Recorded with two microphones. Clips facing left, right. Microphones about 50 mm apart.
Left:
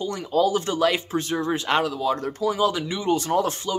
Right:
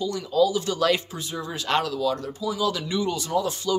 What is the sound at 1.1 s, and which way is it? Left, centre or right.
Speech, left.